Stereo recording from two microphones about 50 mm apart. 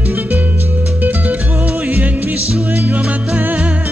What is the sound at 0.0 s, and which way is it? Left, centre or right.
Music, right.